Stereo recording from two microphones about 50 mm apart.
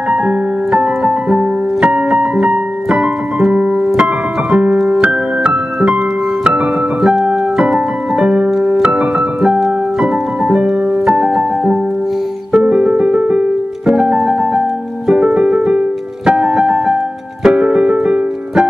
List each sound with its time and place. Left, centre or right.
0.7 s keyboard: centre
5.0 s music: right
6.4 s piano: centre
10.4 s music: centre
16.3 s piano: centre
17.4 s keyboard: centre